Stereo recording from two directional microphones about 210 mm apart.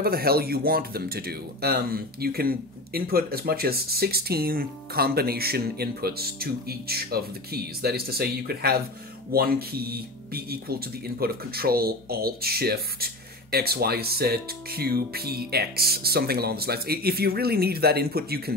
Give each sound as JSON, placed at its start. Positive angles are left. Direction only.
{"t": 0.0, "sound": "speech", "side_deg": -45}